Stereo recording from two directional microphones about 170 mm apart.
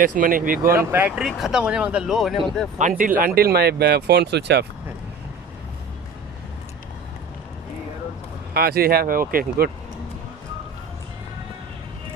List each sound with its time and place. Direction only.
0.0 s speech: 55° right (ahead or behind)
0.7 s speech: 10° right (ahead or behind)
2.8 s speech: 50° right (ahead or behind); by 4.6 s 80° right
8.5 s speech: 65° right (ahead or behind)